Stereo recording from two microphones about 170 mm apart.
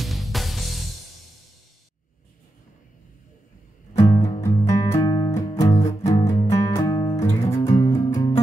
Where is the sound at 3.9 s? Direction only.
20° left (ahead or behind).